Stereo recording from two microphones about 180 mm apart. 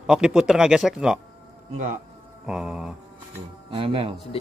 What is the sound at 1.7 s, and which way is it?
Speech, 45° right (ahead or behind).